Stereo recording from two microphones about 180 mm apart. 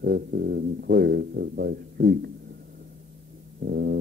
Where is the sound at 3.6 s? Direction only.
60° right (ahead or behind).